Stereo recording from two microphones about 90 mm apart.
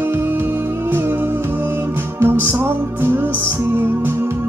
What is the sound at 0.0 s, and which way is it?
Music, 25° right (ahead or behind).